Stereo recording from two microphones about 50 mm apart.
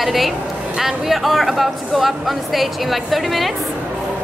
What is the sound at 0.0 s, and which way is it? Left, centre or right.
Speech, centre.